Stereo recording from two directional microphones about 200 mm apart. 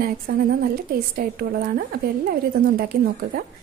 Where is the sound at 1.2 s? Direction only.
45° right (ahead or behind).